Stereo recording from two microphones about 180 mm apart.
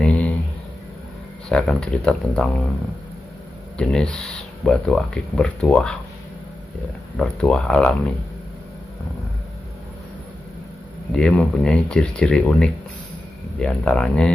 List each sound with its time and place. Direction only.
0.0 s a sound: 5° left (ahead or behind)
1.5 s speech: 5° left (ahead or behind)
3.7 s speech: 5° left (ahead or behind)
7.2 s speech: 5° left (ahead or behind)
11.1 s speech: 5° left (ahead or behind)